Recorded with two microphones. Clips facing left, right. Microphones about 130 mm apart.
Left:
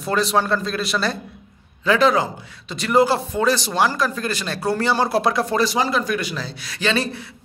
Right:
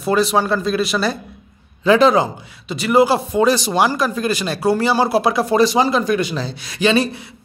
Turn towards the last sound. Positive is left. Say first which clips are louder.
# right 6 dB
turn(degrees=-15)  # may be behind; listen again after turning